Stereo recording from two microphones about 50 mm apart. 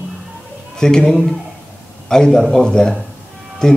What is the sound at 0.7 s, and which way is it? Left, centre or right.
A man's voice, centre.